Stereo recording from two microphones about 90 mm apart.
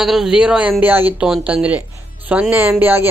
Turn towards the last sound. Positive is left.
turn(degrees=-25)  # may be behind; listen again after turning